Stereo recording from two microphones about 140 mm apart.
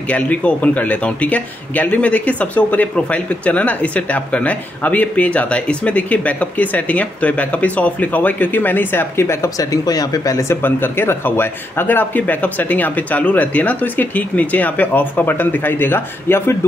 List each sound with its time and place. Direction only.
0.1 s speech: 10° left (ahead or behind)